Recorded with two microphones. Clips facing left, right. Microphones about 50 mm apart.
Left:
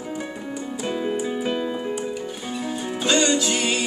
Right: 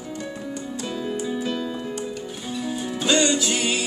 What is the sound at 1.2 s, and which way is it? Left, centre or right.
Keyboard, left.